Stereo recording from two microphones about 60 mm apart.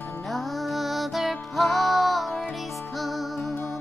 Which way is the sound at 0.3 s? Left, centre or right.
Centre.